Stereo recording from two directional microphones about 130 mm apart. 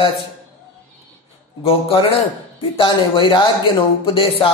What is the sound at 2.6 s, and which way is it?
A man's voice, 40° left (ahead or behind).